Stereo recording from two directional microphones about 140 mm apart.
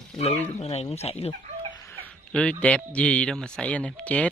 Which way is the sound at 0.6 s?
50° left (ahead or behind).